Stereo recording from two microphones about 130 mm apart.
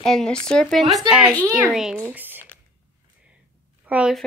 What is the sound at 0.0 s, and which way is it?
Speech, 5° left (ahead or behind).